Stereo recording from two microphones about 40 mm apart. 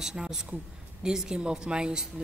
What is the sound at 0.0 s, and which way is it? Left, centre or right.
Speech, centre.